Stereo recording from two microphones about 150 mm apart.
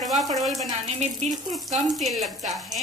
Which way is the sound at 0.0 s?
Centre (ahead or behind).